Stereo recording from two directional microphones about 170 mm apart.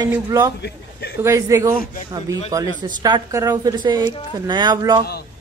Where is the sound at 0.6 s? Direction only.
75° left (ahead or behind).